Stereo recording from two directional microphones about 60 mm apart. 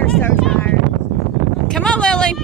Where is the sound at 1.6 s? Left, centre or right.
Centre.